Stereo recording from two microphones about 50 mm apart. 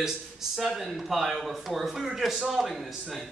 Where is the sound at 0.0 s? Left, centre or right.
Centre.